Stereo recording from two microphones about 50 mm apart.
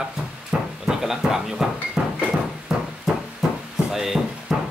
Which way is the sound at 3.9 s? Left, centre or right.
Centre.